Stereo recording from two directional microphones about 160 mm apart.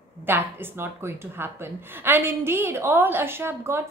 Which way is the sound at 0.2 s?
15° right (ahead or behind).